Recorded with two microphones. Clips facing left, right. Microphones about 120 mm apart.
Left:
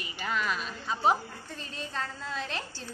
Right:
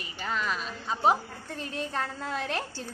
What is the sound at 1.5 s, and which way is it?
A woman's voice, 60° right (ahead or behind).